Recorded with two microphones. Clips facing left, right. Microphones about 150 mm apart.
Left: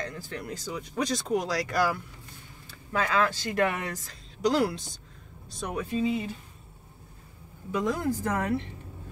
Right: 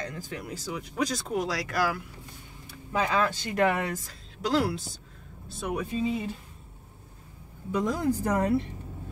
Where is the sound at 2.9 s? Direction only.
20° right (ahead or behind).